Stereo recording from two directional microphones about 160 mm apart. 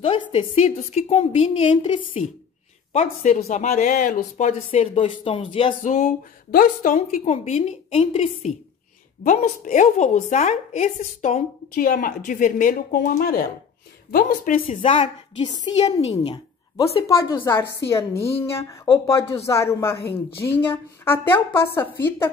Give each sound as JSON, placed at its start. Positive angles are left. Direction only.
{"t": 0.0, "sound": "a woman's voice", "side_deg": 35}
{"t": 2.9, "sound": "speech", "side_deg": 45}
{"t": 5.8, "sound": "speech", "side_deg": 50}
{"t": 9.2, "sound": "speech", "side_deg": 55}
{"t": 14.7, "sound": "a woman's voice", "side_deg": 35}
{"t": 15.8, "sound": "a woman's voice", "side_deg": 40}
{"t": 17.1, "sound": "a woman's voice", "side_deg": 15}